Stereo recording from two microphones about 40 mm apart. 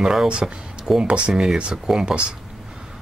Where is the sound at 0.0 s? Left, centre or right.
Centre.